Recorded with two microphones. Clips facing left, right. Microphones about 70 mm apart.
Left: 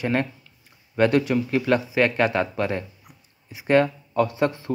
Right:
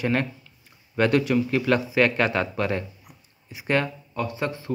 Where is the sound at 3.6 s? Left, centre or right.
Left.